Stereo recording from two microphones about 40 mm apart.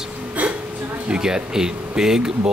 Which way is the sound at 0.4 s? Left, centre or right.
Right.